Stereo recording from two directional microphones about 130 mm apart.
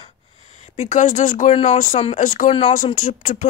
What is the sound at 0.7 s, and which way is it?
Speech, 75° left (ahead or behind).